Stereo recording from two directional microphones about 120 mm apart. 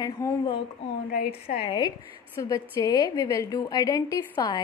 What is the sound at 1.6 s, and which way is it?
Speech, 40° left (ahead or behind).